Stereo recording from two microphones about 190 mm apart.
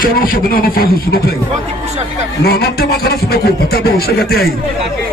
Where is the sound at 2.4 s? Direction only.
55° left (ahead or behind).